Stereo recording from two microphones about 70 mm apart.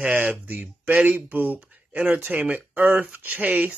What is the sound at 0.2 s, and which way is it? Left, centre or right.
A man's voice, right.